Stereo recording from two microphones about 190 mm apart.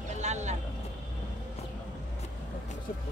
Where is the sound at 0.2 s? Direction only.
35° right (ahead or behind).